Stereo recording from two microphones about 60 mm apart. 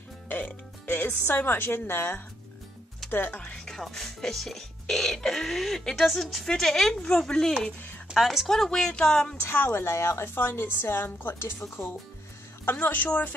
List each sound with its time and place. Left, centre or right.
0.8 s a woman's voice: left
3.4 s speech: centre
8.1 s speech: centre
9.5 s a woman's voice: left
12.7 s a woman's voice: left